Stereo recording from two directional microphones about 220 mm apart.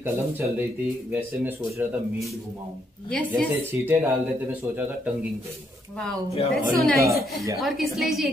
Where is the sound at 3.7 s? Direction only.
10° right (ahead or behind).